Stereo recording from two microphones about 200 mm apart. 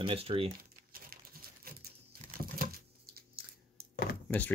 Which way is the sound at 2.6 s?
50° right (ahead or behind).